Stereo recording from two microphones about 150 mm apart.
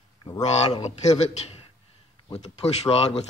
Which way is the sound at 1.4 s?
45° left (ahead or behind).